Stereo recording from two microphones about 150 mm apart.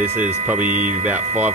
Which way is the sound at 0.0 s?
10° right (ahead or behind).